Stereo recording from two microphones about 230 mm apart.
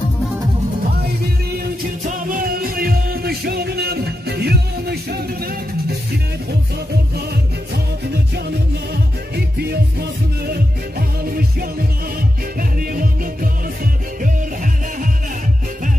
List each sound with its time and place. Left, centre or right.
2.0 s music: right
9.3 s music: right
12.5 s music: right